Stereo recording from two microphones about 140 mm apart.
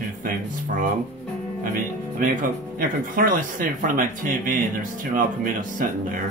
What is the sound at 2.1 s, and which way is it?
Speech, 75° right (ahead or behind).